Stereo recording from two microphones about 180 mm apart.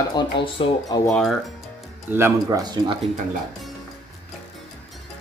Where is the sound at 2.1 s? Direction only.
15° right (ahead or behind).